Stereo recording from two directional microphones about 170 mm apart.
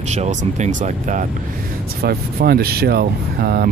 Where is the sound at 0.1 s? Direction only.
45° right (ahead or behind).